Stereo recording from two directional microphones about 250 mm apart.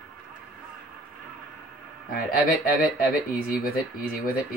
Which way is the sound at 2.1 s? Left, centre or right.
Left.